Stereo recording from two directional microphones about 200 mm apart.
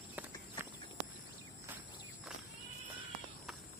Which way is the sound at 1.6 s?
10° right (ahead or behind).